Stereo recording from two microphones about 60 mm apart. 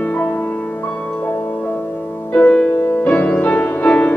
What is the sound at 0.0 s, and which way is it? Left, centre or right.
Music, left.